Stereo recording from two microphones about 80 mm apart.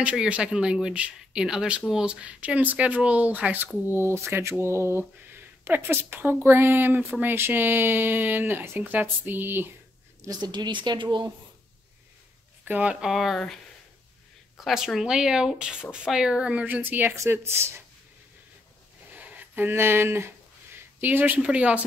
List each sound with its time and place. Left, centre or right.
0.0 s speech: centre
3.9 s speech: right
10.4 s a woman's voice: right
12.6 s speech: centre
13.0 s speech: centre
14.6 s speech: centre; by 17.1 s right
17.1 s speech: right
19.1 s a sound: centre
21.4 s speech: centre